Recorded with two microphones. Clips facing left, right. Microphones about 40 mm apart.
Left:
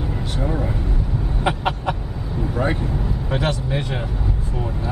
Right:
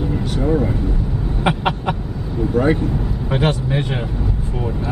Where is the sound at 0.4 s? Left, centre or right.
Centre.